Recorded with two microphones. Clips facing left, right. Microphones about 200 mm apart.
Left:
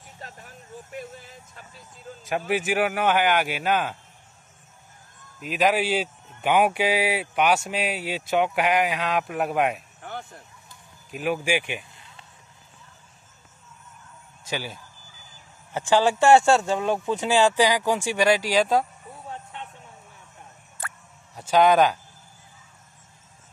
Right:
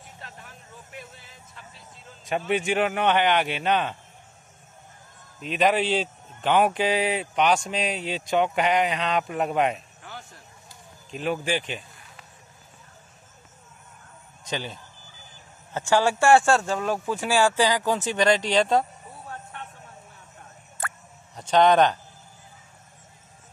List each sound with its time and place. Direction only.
0.2 s speech: 40° left (ahead or behind)
2.2 s a man's voice: 5° left (ahead or behind)
5.4 s a man's voice: 5° left (ahead or behind)
10.0 s a sound: 55° left (ahead or behind)
11.1 s a man's voice: 10° left (ahead or behind)
14.4 s a man's voice: 5° left (ahead or behind)
21.4 s a man's voice: 5° left (ahead or behind)